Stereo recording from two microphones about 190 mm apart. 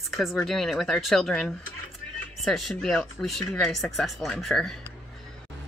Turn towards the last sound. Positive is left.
turn(degrees=0)  # may be behind; listen again after turning